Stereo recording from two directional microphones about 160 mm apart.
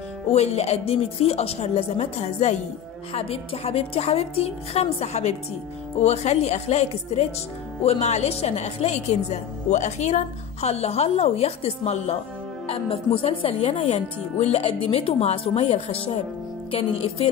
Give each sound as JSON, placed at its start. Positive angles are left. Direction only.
{"t": 0.3, "sound": "a woman's voice", "side_deg": 40}